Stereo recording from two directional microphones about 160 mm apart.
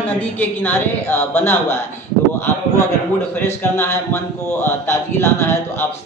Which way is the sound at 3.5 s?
15° left (ahead or behind).